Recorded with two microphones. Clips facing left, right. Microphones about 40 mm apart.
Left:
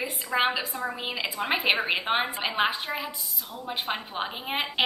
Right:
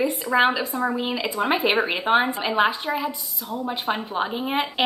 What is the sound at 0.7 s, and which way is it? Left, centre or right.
Speech, right.